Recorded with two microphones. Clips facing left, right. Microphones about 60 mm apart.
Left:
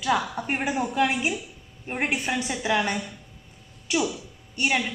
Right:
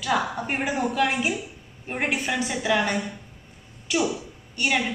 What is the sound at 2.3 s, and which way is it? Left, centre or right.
Speech, centre.